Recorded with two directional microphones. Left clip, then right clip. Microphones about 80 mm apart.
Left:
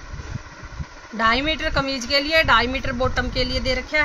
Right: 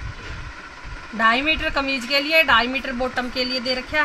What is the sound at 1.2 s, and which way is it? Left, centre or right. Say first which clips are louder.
A woman's voice: right 1 dB; left.